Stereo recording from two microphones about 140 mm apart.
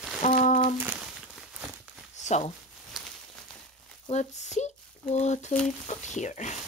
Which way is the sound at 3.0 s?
Centre (ahead or behind).